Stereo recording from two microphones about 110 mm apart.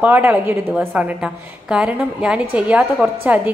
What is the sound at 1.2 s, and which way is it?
A woman's voice, 5° right (ahead or behind).